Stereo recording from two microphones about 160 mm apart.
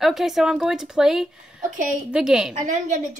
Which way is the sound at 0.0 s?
Centre (ahead or behind).